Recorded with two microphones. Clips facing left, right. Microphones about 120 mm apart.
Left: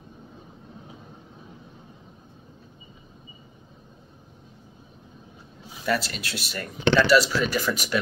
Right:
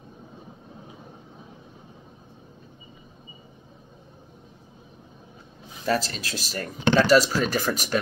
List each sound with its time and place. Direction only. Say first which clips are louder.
5.9 s speech: right 1 dB; 40° right (ahead or behind)